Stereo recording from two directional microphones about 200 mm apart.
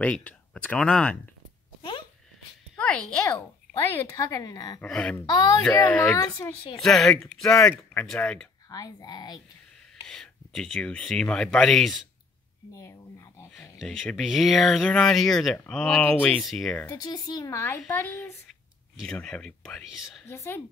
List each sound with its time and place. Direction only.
0.0 s speech: 5° left (ahead or behind)
1.8 s a sound: 25° left (ahead or behind)
2.7 s a child's voice: 5° left (ahead or behind)
3.9 s a woman's voice: 15° left (ahead or behind)
4.8 s speech: 5° left (ahead or behind)
5.2 s speech: 20° left (ahead or behind)
5.6 s a woman's voice: 5° left (ahead or behind)
6.8 s speech: centre (ahead or behind)
8.6 s speech: 20° left (ahead or behind)
10.0 s speech: centre (ahead or behind)
12.7 s a sound: 15° left (ahead or behind)
13.6 s speech: centre (ahead or behind)
17.0 s a woman's voice: 20° left (ahead or behind); by 20.2 s centre (ahead or behind)
20.2 s a woman's voice: 10° left (ahead or behind)